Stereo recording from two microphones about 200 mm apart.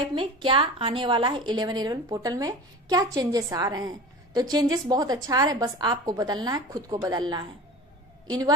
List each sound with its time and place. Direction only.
0.1 s a woman's voice: 25° right (ahead or behind)